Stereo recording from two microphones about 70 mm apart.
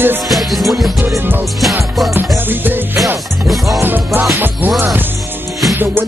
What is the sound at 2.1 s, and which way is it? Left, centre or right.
Music, right.